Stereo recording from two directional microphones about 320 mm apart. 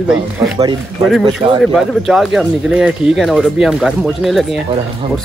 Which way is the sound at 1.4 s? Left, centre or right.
Centre.